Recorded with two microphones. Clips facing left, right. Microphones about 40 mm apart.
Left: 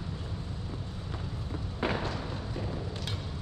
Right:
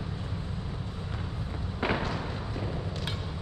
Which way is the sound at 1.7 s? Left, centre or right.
Centre.